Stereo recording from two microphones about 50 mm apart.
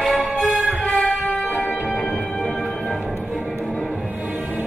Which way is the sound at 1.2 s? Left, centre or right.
Centre.